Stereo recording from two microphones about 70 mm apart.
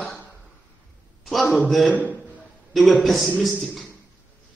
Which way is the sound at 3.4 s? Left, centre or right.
Centre.